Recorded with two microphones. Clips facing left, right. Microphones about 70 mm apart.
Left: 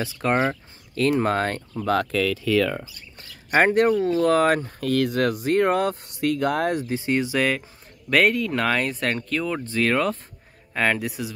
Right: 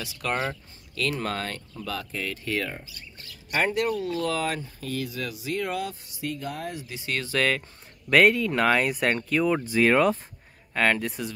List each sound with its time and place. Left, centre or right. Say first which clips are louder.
0.0 s speech: left 7 dB; left
2.1 s speech: left 10 dB; left
3.4 s speech: left 7 dB; left
6.9 s speech: left 7 dB; left; by 10.1 s centre
10.7 s speech: left 1 dB; centre